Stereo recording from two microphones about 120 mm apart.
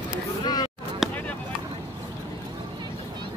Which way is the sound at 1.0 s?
Centre (ahead or behind).